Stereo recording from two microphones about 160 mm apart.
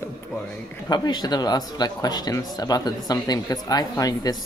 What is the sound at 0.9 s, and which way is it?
Speech, 25° left (ahead or behind).